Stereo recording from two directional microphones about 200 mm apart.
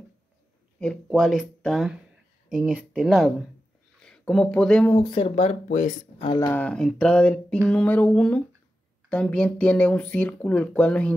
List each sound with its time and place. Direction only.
0.7 s speech: centre (ahead or behind)
4.9 s speech: 25° left (ahead or behind)
6.2 s speech: 20° left (ahead or behind)
6.5 s speech: 5° left (ahead or behind)
7.6 s a sound: 5° left (ahead or behind)
9.1 s speech: 5° left (ahead or behind)